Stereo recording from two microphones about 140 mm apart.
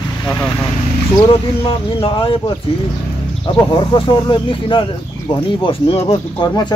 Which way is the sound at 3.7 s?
35° left (ahead or behind).